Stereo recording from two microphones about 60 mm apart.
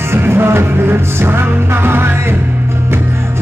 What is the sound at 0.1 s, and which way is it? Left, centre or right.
Music, right.